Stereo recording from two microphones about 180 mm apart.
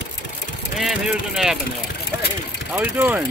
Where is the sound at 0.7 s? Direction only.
Centre (ahead or behind).